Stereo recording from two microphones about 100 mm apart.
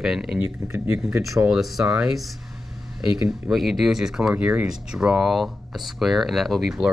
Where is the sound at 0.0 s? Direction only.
5° right (ahead or behind).